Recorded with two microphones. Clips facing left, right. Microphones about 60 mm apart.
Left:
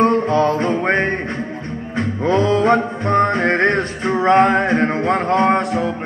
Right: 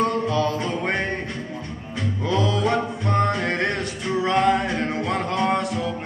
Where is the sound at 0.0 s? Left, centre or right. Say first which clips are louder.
Left 7 dB; left.